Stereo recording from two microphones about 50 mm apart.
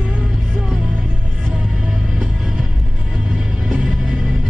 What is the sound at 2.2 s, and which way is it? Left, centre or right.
Music, centre.